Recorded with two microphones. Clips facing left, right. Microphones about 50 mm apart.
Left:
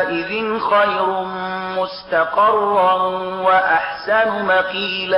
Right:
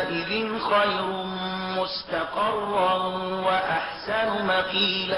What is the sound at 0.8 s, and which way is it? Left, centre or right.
Speech, left.